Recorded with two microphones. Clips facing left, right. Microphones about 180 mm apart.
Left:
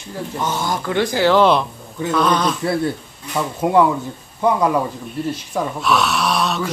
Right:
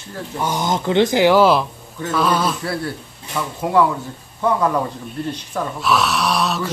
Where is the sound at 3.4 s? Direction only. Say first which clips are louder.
Left 2 dB; 25° left (ahead or behind).